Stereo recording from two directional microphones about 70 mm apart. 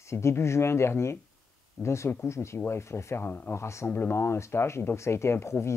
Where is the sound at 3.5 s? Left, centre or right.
Left.